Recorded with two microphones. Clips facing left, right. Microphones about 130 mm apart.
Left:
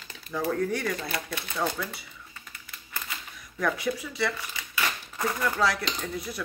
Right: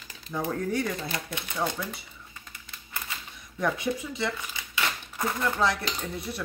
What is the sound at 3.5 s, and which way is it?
Speech, 25° right (ahead or behind).